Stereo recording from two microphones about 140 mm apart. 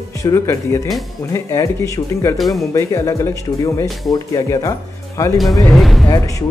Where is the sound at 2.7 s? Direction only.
20° left (ahead or behind).